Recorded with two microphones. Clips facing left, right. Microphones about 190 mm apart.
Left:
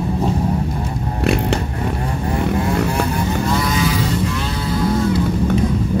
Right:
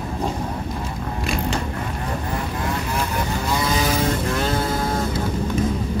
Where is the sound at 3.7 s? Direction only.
40° right (ahead or behind).